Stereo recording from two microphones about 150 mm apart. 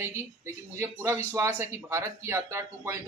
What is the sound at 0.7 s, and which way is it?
Speech, 15° right (ahead or behind).